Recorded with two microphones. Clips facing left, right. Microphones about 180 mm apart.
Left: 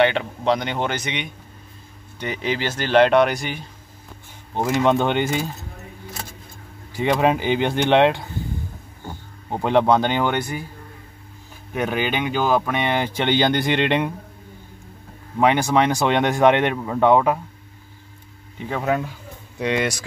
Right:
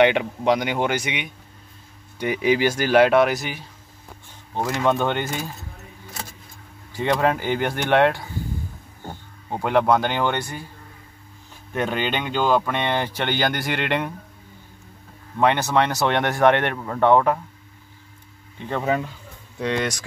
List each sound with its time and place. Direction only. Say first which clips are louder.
0.0 s speech: right 1 dB; 15° right (ahead or behind)
4.6 s speech: left 3 dB; 20° left (ahead or behind)
7.0 s speech: left 2 dB; 15° left (ahead or behind)
9.5 s speech: left 2 dB; 20° left (ahead or behind)
11.7 s speech: left 1 dB; 10° left (ahead or behind)
15.3 s speech: left 2 dB; 10° left (ahead or behind)
18.7 s speech: left 1 dB; 5° left (ahead or behind)